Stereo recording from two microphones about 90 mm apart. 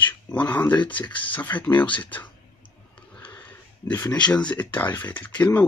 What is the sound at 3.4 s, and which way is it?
Dog, 20° left (ahead or behind).